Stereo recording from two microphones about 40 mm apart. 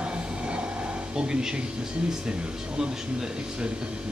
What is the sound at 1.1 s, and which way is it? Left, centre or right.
Speech, right.